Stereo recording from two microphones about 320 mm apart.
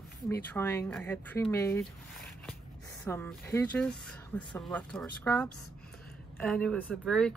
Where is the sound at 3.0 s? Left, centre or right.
Centre.